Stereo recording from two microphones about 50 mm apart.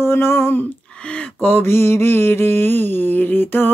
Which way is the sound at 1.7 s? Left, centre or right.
Left.